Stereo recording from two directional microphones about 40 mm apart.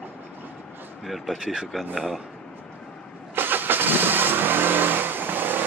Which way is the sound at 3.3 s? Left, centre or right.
Right.